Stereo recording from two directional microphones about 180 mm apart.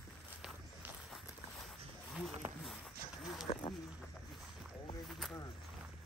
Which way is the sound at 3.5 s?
40° left (ahead or behind).